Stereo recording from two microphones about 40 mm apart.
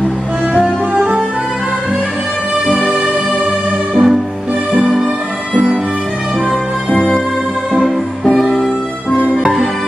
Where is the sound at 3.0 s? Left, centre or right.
Right.